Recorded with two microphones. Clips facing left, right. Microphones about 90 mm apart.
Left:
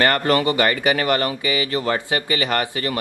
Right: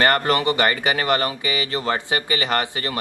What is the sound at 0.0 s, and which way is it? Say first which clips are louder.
Speech: left 1 dB; 25° right (ahead or behind).